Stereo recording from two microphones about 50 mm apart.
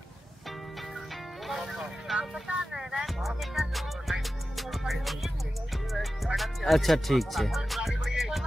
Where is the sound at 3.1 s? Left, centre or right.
Centre.